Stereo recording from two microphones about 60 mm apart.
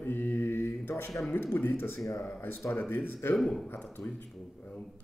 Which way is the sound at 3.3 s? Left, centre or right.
Centre.